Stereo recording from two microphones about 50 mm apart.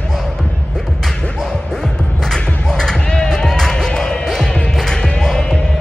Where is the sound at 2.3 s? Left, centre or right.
Centre.